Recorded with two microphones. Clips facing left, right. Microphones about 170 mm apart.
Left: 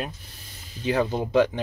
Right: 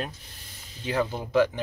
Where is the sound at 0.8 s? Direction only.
20° left (ahead or behind).